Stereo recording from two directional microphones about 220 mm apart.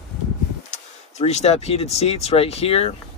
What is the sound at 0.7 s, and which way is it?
Speech, 30° left (ahead or behind).